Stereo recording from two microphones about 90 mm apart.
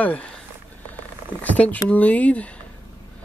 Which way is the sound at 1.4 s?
15° left (ahead or behind).